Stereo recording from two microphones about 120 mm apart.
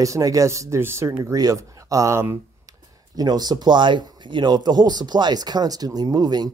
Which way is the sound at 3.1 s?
35° right (ahead or behind).